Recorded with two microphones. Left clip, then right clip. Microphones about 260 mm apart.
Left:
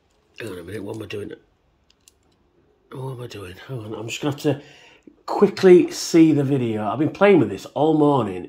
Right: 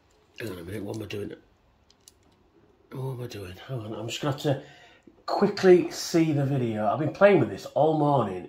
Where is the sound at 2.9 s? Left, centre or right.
Centre.